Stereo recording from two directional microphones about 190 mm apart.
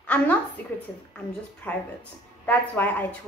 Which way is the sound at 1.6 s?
10° left (ahead or behind).